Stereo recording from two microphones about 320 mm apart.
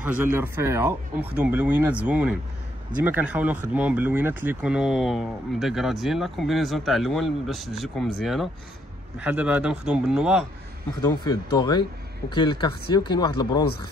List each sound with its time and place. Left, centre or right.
0.0 s speech: centre
11.1 s speech: centre